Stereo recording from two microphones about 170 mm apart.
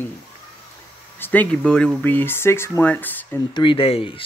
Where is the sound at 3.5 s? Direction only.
30° left (ahead or behind).